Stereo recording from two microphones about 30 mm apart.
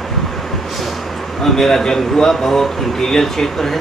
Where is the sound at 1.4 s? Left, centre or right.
Centre.